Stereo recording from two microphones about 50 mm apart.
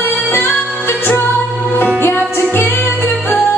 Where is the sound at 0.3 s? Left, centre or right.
Left.